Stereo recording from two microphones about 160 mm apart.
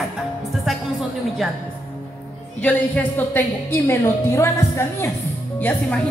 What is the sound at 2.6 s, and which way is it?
A woman's voice, 10° left (ahead or behind).